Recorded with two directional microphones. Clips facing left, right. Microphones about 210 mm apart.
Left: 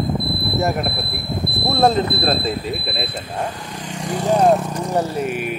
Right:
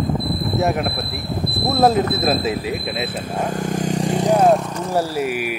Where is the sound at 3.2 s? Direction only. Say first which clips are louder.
Right 4 dB; 45° right (ahead or behind).